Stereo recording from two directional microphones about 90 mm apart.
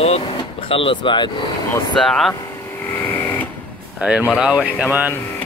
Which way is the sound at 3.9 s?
15° right (ahead or behind).